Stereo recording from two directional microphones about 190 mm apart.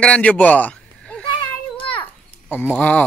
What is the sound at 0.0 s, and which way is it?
A man's voice, 5° left (ahead or behind).